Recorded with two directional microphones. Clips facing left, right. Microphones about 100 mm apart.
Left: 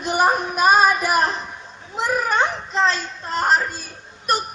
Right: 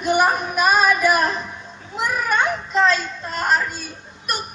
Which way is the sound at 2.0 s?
30° left (ahead or behind).